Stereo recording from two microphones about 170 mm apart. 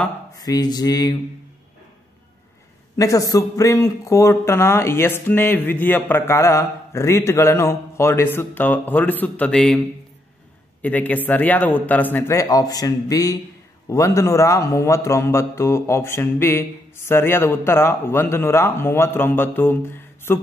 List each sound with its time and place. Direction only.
0.4 s speech: 25° left (ahead or behind)
3.0 s a man's voice: 20° left (ahead or behind)
10.8 s a man's voice: 10° left (ahead or behind)